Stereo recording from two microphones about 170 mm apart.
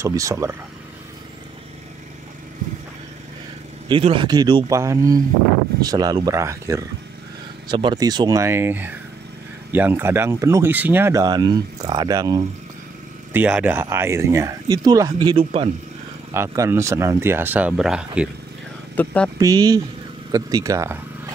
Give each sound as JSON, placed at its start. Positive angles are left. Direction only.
{"t": 0.0, "sound": "speech", "side_deg": -15}
{"t": 3.9, "sound": "speech", "side_deg": -30}
{"t": 13.3, "sound": "speech", "side_deg": -10}
{"t": 16.3, "sound": "speech", "side_deg": -15}
{"t": 18.9, "sound": "speech", "side_deg": 5}
{"t": 19.3, "sound": "speech", "side_deg": -20}